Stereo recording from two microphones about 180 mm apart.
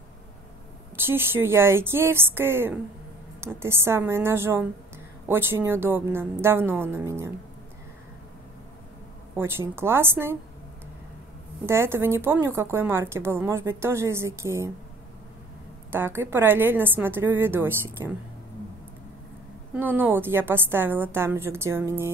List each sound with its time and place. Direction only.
0.9 s speech: 10° right (ahead or behind)
9.4 s speech: 15° right (ahead or behind)
11.6 s speech: 15° right (ahead or behind)
15.9 s speech: 10° right (ahead or behind)
19.7 s speech: 10° right (ahead or behind)